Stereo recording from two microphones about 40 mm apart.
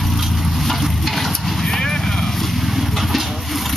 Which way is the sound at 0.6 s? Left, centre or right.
Centre.